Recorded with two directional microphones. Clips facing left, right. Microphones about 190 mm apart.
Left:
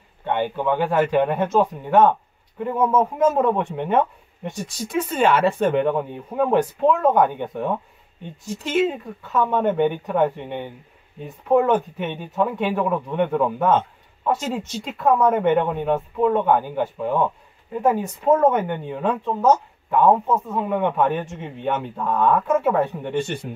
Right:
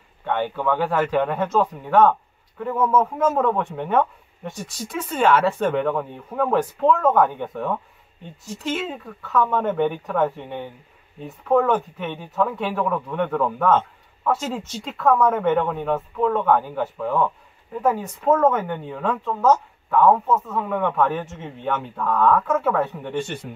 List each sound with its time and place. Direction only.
0.2 s speech: 20° left (ahead or behind)